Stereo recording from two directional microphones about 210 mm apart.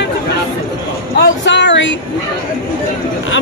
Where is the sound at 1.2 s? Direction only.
55° left (ahead or behind).